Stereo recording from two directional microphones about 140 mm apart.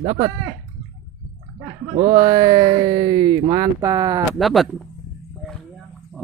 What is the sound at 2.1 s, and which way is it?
Speech, 30° right (ahead or behind).